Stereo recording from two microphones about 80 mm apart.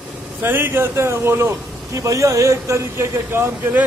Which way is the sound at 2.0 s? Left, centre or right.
Right.